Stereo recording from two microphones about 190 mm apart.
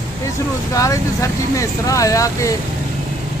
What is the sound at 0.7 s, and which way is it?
Speech, 15° left (ahead or behind).